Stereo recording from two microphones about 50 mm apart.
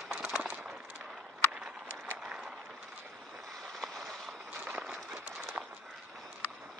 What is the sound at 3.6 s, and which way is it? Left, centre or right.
Vehicle, centre.